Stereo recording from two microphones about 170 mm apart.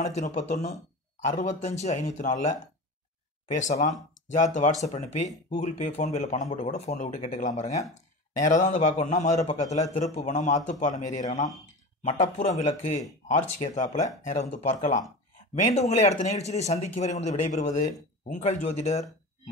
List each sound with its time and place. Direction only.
0.0 s speech: 45° left (ahead or behind)